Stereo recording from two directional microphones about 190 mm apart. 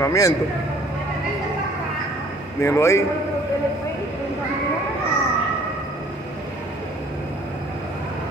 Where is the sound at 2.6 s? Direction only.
15° left (ahead or behind).